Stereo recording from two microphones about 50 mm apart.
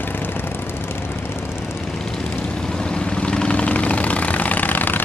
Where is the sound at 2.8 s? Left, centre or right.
Centre; by 5.0 s left.